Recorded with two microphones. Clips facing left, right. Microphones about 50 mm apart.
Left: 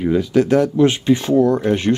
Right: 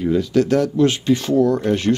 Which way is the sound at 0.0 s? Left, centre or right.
Left.